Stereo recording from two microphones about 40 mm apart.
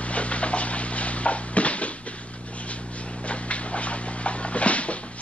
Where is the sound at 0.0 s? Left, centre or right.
Left.